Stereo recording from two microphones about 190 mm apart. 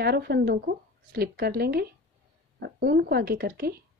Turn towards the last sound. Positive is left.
turn(degrees=-55)  # may be behind; listen again after turning